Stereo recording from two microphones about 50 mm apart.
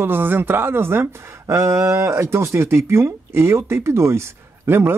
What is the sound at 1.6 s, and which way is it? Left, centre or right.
Speech, right.